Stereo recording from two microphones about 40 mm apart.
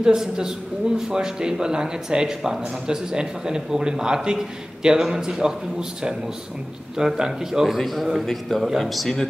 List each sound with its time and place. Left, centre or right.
0.0 s a man's voice: centre